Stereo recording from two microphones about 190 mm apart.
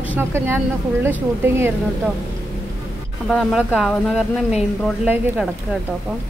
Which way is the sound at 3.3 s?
Centre (ahead or behind).